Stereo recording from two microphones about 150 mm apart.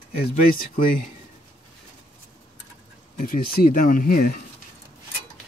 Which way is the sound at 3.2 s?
70° left (ahead or behind).